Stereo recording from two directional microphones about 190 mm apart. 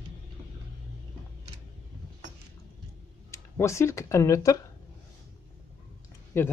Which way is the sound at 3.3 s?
15° left (ahead or behind).